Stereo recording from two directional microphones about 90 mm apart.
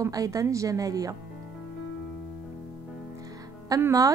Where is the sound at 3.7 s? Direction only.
40° right (ahead or behind).